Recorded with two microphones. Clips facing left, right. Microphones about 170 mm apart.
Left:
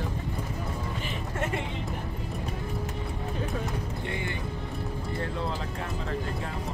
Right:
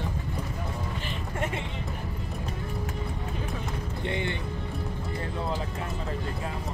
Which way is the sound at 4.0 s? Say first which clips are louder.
Right 3 dB; 20° right (ahead or behind).